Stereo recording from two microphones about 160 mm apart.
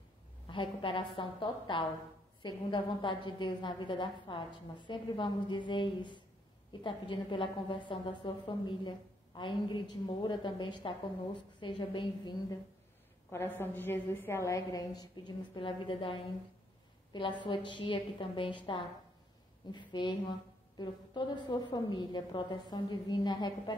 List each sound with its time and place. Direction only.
0.5 s a woman's voice: 35° left (ahead or behind)
13.3 s a woman's voice: 15° left (ahead or behind)